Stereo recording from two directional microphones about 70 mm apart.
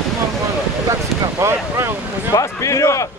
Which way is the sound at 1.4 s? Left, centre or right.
Right.